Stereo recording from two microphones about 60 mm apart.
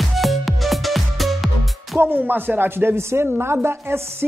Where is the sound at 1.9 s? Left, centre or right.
Right.